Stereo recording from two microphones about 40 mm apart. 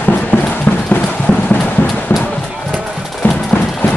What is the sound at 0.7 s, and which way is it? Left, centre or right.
Clip-clop, left.